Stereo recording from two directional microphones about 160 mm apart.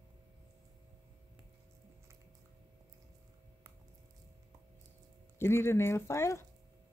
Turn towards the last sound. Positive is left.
turn(degrees=15)  # may be behind; listen again after turning